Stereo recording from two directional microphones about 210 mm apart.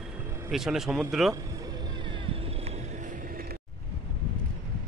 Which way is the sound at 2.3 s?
30° right (ahead or behind).